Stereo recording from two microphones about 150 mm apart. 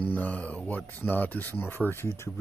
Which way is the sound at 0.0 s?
10° left (ahead or behind).